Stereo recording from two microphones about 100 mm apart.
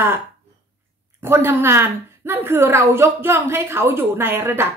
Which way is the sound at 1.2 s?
25° right (ahead or behind).